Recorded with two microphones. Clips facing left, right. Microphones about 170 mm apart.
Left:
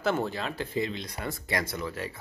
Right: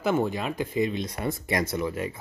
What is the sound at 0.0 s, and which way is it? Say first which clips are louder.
Speech: right 3 dB; 15° right (ahead or behind).